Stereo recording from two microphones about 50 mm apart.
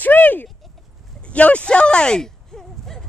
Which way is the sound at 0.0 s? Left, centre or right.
Left.